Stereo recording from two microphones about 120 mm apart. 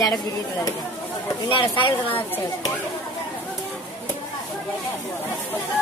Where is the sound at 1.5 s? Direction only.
45° left (ahead or behind).